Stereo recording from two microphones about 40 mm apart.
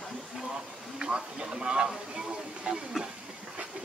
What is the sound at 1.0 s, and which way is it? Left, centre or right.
Speech, right.